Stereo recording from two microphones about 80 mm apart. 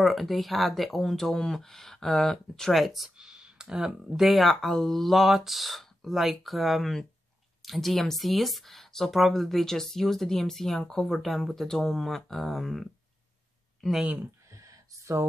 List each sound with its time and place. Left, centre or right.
0.0 s speech: centre
14.0 s speech: right
14.5 s a sound: right